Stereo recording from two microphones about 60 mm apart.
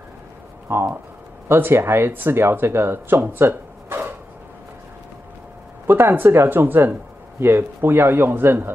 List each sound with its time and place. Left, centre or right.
0.7 s speech: right
5.9 s speech: right